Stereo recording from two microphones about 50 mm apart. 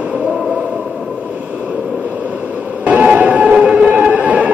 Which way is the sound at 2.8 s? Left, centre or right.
Right.